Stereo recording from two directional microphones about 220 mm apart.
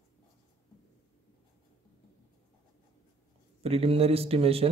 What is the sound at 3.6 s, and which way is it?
A man's voice, 25° right (ahead or behind).